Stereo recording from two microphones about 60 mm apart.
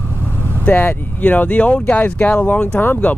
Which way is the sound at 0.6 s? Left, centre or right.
Left.